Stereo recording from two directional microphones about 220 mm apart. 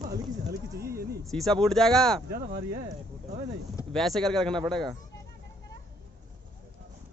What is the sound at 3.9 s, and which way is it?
A man's voice, centre (ahead or behind).